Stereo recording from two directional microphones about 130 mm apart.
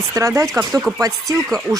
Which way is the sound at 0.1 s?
25° right (ahead or behind).